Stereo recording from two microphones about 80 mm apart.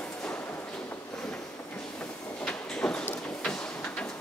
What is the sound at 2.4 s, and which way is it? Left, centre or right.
Train, centre.